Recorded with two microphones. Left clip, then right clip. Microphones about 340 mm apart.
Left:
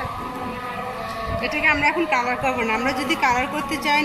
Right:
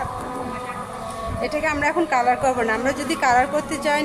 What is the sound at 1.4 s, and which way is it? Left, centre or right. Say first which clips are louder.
A woman's voice: left 2 dB; centre.